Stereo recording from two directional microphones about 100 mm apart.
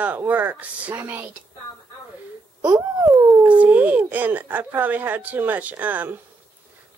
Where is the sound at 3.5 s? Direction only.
15° right (ahead or behind).